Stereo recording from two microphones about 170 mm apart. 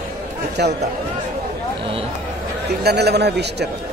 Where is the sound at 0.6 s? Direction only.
75° right (ahead or behind).